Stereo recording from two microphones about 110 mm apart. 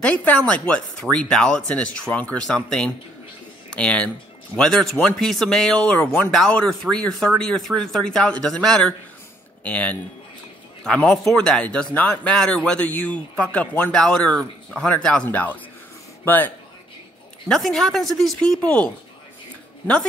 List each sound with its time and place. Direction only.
0.0 s speech: 10° left (ahead or behind)
17.5 s speech: 5° left (ahead or behind)